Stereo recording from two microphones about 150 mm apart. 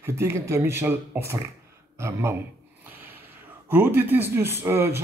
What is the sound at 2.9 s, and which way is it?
Snort, 10° right (ahead or behind).